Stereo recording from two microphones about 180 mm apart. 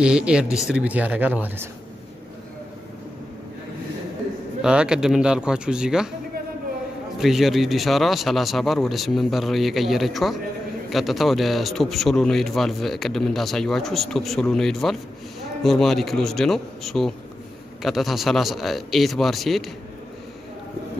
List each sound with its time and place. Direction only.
0.0 s speech: 5° right (ahead or behind)
4.6 s speech: 5° right (ahead or behind)
7.2 s speech: centre (ahead or behind)